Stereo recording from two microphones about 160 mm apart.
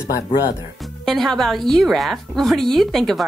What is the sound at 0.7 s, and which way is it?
Speech, centre (ahead or behind).